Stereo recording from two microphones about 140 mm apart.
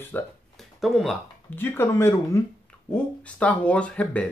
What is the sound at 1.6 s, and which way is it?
Speech, 15° left (ahead or behind).